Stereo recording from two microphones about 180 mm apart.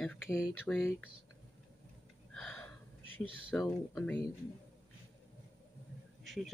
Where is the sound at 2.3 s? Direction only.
5° left (ahead or behind).